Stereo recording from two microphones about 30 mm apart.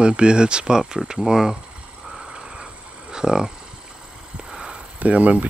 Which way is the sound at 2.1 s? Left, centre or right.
Right.